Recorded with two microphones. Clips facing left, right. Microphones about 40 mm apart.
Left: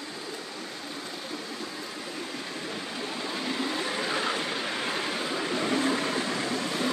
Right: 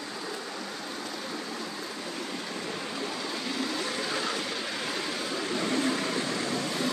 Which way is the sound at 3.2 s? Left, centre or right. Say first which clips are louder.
Left 4 dB; left.